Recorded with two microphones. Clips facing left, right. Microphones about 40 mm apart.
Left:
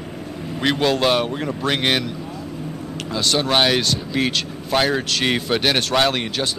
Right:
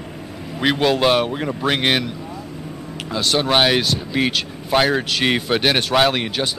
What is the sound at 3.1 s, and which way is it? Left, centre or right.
A man's voice, centre.